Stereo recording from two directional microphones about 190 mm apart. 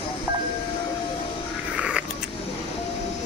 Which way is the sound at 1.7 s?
5° right (ahead or behind).